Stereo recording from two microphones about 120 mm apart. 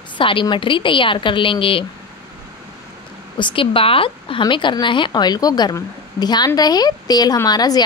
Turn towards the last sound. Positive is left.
turn(degrees=35)  # may be behind; listen again after turning